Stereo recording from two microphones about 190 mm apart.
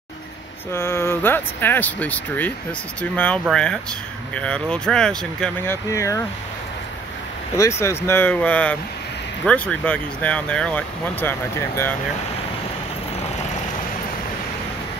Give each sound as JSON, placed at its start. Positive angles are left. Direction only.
{"t": 0.7, "sound": "speech", "side_deg": 15}
{"t": 5.9, "sound": "speech", "side_deg": 15}
{"t": 7.8, "sound": "speech", "side_deg": 15}